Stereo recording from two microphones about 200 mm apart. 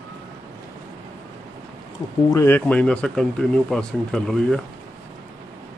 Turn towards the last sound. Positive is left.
turn(degrees=5)  # may be behind; listen again after turning